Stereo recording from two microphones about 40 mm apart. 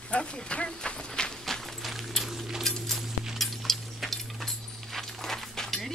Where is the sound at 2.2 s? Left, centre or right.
Centre.